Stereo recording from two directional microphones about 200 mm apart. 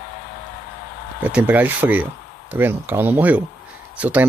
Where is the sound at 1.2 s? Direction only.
10° right (ahead or behind).